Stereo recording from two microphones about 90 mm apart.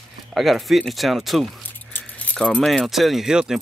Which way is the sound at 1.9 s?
15° left (ahead or behind).